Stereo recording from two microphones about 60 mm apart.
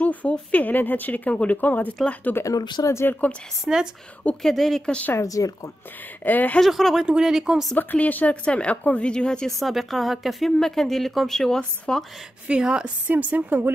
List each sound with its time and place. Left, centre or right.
0.0 s speech: left
2.4 s speech: left
2.9 s speech: left
3.6 s speech: centre
4.4 s a woman's voice: centre
4.8 s speech: centre
5.2 s speech: left
6.2 s speech: left
6.6 s a woman's voice: centre
7.7 s speech: left; by 9.5 s centre
9.6 s a woman's voice: centre
12.4 s speech: centre
13.1 s a woman's voice: right